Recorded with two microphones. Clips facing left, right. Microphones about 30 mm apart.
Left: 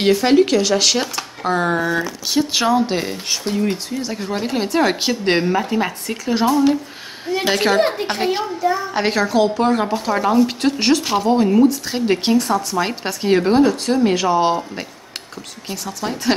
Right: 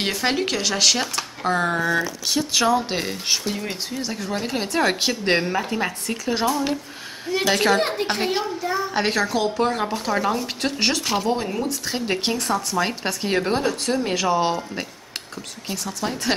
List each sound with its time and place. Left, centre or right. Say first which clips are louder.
0.0 s a woman's voice: left 9 dB; centre
2.9 s a woman's voice: left 2 dB; centre
15.7 s a woman's voice: left 2 dB; centre